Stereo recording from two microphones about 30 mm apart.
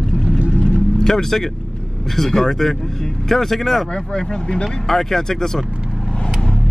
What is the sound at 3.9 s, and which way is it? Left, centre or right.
Speech, left.